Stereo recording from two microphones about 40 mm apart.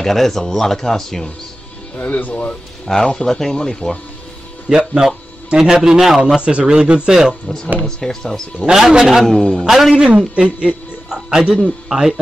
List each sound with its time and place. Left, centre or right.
0.0 s speech: centre
2.0 s speech: left
2.9 s speech: centre
4.6 s speech: centre
6.3 s a man's voice: right
7.8 s speech: centre
8.6 s a man's voice: left
8.9 s speech: centre
9.2 s speech: centre
9.7 s a man's voice: centre
9.9 s a man's voice: right